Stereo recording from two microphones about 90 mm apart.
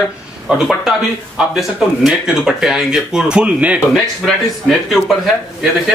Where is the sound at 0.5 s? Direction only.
10° right (ahead or behind).